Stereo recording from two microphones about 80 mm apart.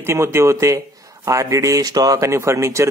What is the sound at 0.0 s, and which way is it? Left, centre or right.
Speech, right.